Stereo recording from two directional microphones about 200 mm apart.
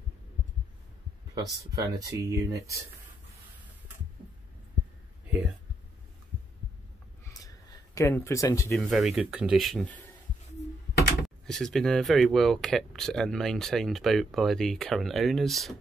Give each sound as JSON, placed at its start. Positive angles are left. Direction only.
{"t": 1.3, "sound": "speech", "side_deg": -15}
{"t": 7.2, "sound": "a sound", "side_deg": 15}
{"t": 8.2, "sound": "speech", "side_deg": 15}
{"t": 8.7, "sound": "speech", "side_deg": 0}
{"t": 11.2, "sound": "speech", "side_deg": 0}